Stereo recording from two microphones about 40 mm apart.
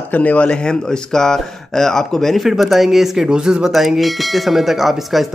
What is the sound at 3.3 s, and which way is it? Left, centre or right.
Speech, right.